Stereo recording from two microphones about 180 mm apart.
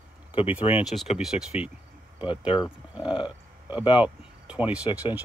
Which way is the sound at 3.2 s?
10° right (ahead or behind).